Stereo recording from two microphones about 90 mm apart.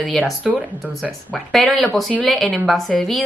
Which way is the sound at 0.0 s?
10° left (ahead or behind).